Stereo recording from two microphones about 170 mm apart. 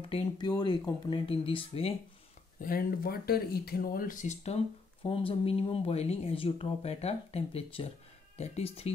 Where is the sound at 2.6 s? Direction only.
60° left (ahead or behind).